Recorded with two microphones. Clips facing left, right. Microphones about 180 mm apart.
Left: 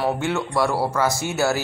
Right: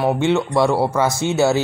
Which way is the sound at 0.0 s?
20° right (ahead or behind).